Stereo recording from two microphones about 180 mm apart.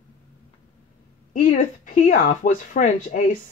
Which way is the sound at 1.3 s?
50° left (ahead or behind).